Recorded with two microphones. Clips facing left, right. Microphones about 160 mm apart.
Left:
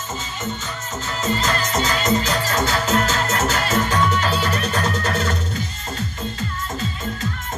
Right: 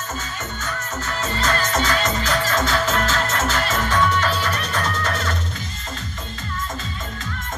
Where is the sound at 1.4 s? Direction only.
30° left (ahead or behind).